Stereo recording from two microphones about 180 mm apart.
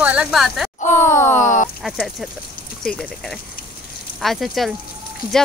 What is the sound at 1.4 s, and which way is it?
Speech, 45° left (ahead or behind).